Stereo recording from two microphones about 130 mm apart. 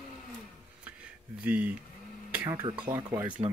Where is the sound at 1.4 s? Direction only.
10° right (ahead or behind).